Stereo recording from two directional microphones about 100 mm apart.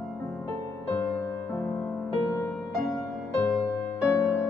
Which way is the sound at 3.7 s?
15° left (ahead or behind).